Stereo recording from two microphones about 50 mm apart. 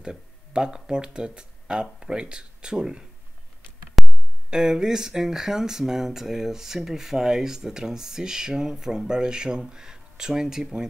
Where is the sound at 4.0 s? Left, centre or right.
Centre.